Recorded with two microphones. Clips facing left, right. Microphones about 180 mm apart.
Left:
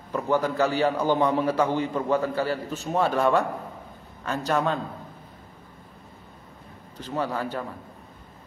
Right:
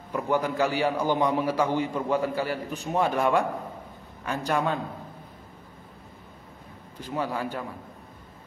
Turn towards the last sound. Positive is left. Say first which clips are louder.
# left 1 dB
turn(degrees=-10)  # may be behind; listen again after turning